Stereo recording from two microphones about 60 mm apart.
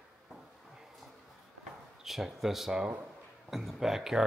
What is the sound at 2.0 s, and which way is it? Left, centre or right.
Speech, centre.